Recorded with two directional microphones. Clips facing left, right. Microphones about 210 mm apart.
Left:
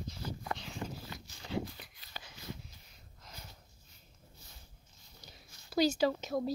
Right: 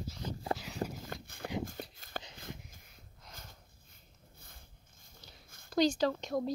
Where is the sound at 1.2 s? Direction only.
55° right (ahead or behind).